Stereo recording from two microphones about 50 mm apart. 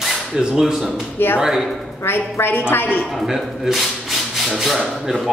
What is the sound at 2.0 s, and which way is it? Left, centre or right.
Speech, left.